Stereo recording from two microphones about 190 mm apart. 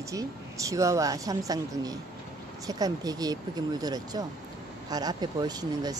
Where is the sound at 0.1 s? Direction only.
15° right (ahead or behind).